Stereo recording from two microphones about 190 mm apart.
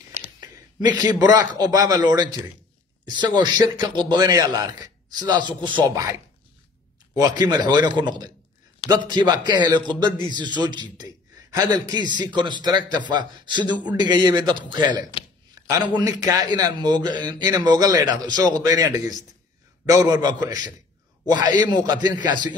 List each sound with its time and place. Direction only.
0.4 s a man's voice: 20° right (ahead or behind)
7.2 s a man's voice: 20° right (ahead or behind)